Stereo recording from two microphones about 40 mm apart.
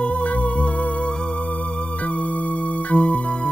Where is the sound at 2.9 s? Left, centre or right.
Left.